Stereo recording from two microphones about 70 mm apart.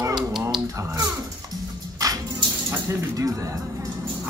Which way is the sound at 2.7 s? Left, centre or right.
Right.